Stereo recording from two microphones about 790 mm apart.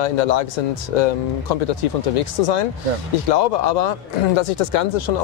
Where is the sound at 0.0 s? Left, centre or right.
Left.